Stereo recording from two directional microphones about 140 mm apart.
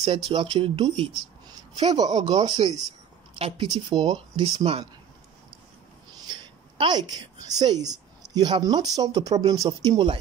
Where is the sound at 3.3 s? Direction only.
40° right (ahead or behind).